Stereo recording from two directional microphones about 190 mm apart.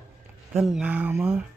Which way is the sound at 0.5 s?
Centre (ahead or behind).